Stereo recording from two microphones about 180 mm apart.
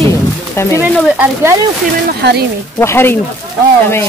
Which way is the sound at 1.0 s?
10° right (ahead or behind).